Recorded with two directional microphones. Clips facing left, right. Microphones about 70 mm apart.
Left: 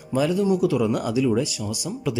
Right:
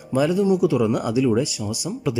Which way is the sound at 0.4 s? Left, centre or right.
Centre.